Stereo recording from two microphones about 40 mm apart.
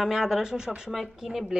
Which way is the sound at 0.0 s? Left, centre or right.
Centre.